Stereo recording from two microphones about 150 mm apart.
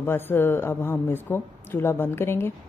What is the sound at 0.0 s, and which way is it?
A man's voice, 15° left (ahead or behind).